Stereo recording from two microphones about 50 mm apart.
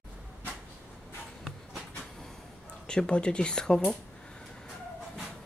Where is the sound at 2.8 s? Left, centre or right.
Centre.